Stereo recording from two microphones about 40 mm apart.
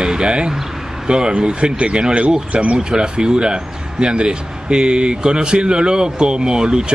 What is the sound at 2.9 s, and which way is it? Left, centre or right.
Speech, right.